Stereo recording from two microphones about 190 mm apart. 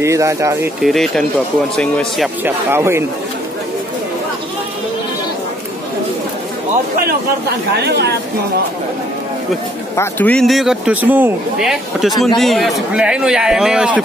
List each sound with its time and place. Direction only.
0.0 s speech: 15° right (ahead or behind)
0.7 s speech: centre (ahead or behind)
2.4 s speech: 10° right (ahead or behind)
7.7 s speech: 60° right (ahead or behind)
9.9 s speech: 10° left (ahead or behind)